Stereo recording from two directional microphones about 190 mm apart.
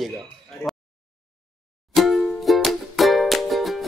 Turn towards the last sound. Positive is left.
turn(degrees=0)  # may be behind; listen again after turning